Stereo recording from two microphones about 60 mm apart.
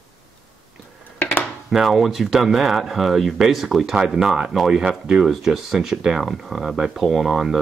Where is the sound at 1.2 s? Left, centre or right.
Left.